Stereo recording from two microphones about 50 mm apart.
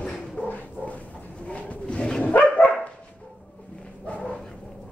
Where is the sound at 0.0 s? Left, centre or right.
Centre.